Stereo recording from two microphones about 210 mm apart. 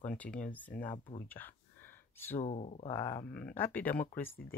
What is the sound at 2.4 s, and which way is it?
Speech, 35° left (ahead or behind).